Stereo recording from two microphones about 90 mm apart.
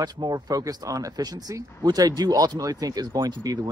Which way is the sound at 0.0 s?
50° right (ahead or behind).